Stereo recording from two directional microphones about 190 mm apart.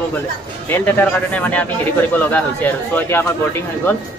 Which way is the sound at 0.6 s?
10° left (ahead or behind).